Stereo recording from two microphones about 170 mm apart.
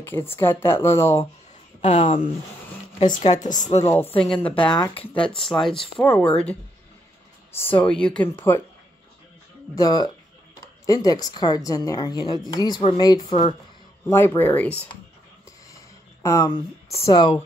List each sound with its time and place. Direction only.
0.0 s speech: 15° left (ahead or behind)
1.8 s speech: 35° left (ahead or behind)
3.3 s a woman's voice: 50° left (ahead or behind)
3.8 s speech: 15° left (ahead or behind)
5.1 s speech: 30° left (ahead or behind)
5.4 s speech: centre (ahead or behind)
7.5 s speech: 10° left (ahead or behind)
9.8 s a woman's voice: 25° left (ahead or behind)
14.0 s speech: 15° left (ahead or behind)
15.7 s a sound: 20° left (ahead or behind)
16.5 s a woman's voice: 35° left (ahead or behind)